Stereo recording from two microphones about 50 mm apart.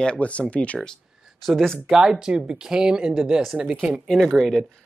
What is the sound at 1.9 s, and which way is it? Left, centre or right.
Speech, centre.